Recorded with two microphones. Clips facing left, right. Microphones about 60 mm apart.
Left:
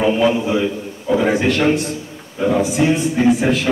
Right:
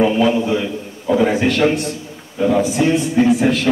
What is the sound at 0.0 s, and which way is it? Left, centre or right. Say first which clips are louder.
Speech: right 1 dB; centre.